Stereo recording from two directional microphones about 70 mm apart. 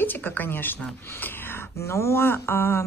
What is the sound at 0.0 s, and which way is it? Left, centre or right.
A woman's voice, left.